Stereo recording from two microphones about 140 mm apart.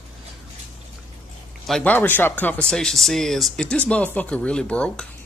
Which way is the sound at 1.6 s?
5° left (ahead or behind).